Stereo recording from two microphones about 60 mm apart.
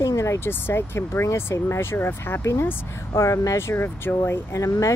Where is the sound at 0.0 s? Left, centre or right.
Left.